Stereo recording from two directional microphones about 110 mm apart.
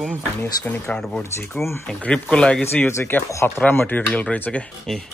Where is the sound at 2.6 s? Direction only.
20° left (ahead or behind).